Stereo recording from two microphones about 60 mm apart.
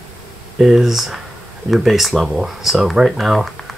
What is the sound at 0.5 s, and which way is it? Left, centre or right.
Speech, centre.